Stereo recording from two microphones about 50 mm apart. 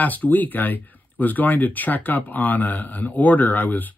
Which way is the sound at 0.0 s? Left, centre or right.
Left.